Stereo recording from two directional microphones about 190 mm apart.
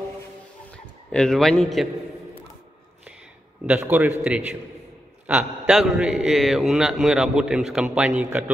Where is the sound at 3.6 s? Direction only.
5° right (ahead or behind).